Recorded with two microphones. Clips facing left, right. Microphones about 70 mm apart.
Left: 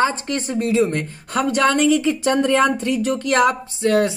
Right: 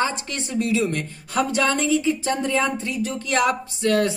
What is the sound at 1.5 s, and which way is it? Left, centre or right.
Speech, left.